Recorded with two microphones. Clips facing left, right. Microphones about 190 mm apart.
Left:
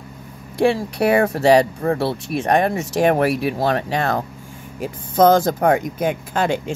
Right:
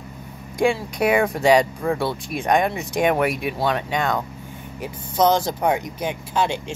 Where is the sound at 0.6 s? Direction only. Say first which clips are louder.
Left 3 dB; 30° left (ahead or behind).